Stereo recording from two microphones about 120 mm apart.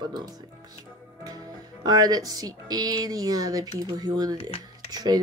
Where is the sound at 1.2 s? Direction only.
35° right (ahead or behind).